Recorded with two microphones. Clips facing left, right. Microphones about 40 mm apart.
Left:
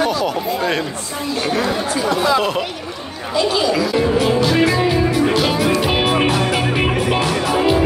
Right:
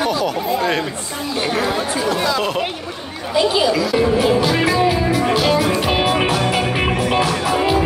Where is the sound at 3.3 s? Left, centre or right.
Centre.